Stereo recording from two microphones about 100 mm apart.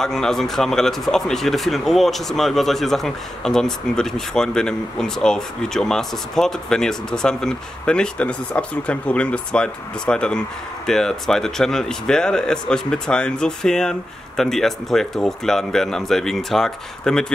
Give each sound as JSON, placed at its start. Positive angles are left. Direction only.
{"t": 0.0, "sound": "speech", "side_deg": 5}